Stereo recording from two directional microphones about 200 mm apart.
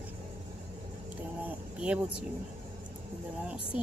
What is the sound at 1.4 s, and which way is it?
Speech, 5° right (ahead or behind).